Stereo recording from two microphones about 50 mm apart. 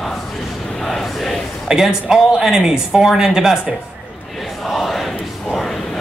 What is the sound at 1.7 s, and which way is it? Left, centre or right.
Speech, centre.